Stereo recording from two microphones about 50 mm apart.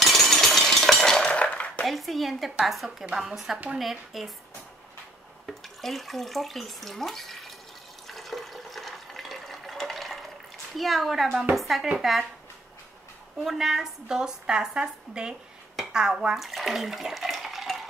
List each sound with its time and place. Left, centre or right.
0.0 s a sound: centre
1.2 s cutlery: left
1.9 s a woman's voice: centre
5.5 s speech: centre
8.1 s water: centre
10.8 s a woman's voice: centre
13.4 s a woman's voice: centre
15.7 s dishes: centre
16.3 s dishes: centre